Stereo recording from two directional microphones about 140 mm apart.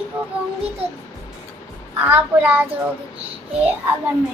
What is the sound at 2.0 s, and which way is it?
Speech, 15° right (ahead or behind).